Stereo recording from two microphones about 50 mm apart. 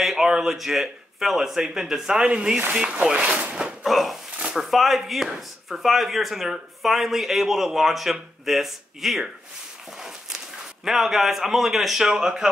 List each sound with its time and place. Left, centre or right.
0.0 s speech: centre; by 3.5 s right
3.8 s speech: centre
10.9 s speech: centre